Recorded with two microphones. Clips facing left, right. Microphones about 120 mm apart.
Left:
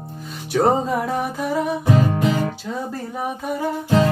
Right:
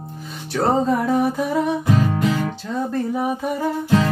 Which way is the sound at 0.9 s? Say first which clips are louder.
Right 4 dB; centre (ahead or behind).